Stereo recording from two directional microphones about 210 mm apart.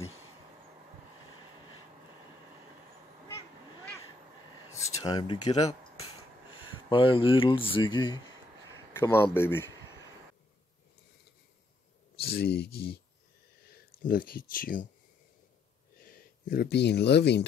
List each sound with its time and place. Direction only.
4.7 s speech: 15° left (ahead or behind)
6.9 s speech: 25° left (ahead or behind)
12.2 s speech: 50° left (ahead or behind)
16.0 s speech: 45° left (ahead or behind)